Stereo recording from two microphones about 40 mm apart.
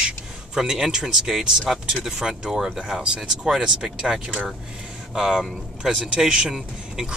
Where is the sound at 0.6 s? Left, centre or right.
Centre.